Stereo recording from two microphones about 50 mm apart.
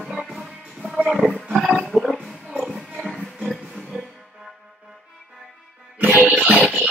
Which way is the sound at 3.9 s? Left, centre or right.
Centre.